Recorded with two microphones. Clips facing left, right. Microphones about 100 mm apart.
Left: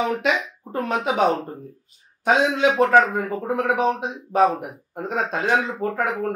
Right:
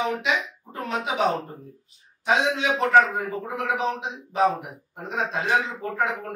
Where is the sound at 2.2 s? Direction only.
50° left (ahead or behind).